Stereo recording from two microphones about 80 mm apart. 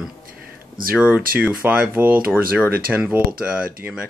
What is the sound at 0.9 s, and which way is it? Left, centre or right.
Speech, centre.